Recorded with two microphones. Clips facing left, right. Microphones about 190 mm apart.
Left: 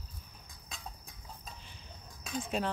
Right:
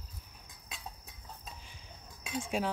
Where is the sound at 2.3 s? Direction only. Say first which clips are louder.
Right 1 dB; 10° right (ahead or behind).